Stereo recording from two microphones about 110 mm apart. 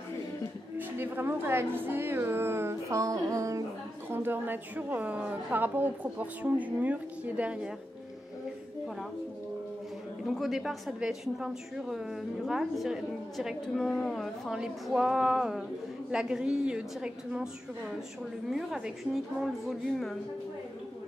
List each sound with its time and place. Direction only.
0.7 s a woman's voice: 20° right (ahead or behind)
4.1 s a woman's voice: 20° right (ahead or behind)
10.2 s a woman's voice: centre (ahead or behind)